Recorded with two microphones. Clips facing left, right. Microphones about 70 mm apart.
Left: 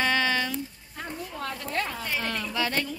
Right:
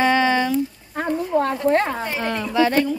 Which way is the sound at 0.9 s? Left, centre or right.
Right.